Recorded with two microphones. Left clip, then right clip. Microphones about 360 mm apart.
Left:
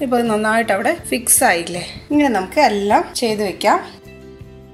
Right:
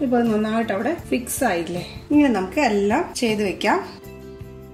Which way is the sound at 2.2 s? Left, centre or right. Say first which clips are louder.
Left 9 dB; left.